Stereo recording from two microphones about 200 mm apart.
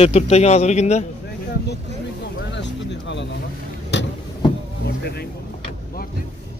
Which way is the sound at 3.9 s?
60° left (ahead or behind).